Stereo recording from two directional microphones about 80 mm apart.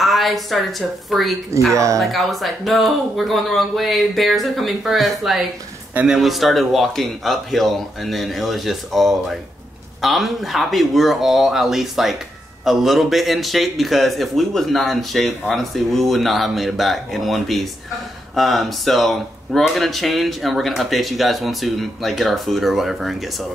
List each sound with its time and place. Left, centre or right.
0.0 s speech: centre
1.7 s speech: right
2.0 s speech: centre